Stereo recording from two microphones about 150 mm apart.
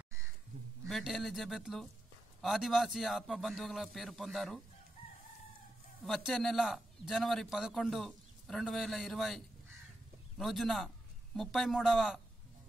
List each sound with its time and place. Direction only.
0.8 s a man's voice: centre (ahead or behind)
6.0 s a man's voice: centre (ahead or behind)